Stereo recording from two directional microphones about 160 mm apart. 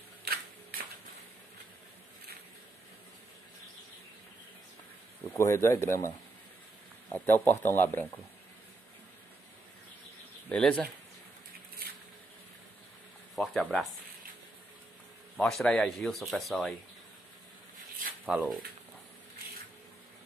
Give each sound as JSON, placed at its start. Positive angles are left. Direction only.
{"t": 5.3, "sound": "speech", "side_deg": 20}
{"t": 10.5, "sound": "speech", "side_deg": 5}
{"t": 13.4, "sound": "speech", "side_deg": 5}
{"t": 15.3, "sound": "speech", "side_deg": 5}
{"t": 18.2, "sound": "speech", "side_deg": -5}